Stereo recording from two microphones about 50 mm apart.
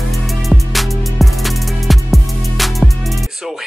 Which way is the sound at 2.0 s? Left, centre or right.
Centre.